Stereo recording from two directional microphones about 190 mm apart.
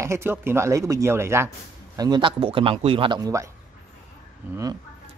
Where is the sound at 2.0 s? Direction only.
25° right (ahead or behind).